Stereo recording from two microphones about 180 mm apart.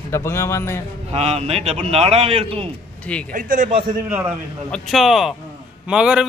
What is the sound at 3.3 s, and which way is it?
Speech, 45° right (ahead or behind).